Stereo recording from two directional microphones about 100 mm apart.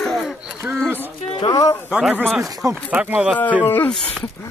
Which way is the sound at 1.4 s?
40° left (ahead or behind).